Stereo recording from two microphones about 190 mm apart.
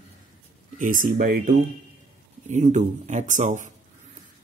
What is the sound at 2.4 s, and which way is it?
Speech, 40° right (ahead or behind).